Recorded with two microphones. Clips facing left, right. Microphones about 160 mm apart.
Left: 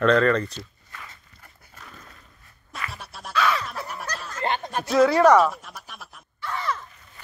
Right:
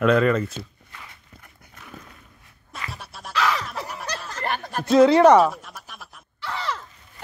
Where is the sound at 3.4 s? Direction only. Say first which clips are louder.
Even; 90° right.